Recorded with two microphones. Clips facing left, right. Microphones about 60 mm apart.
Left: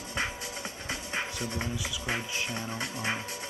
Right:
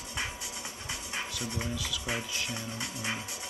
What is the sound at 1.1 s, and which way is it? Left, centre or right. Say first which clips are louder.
Music: left 2 dB; left.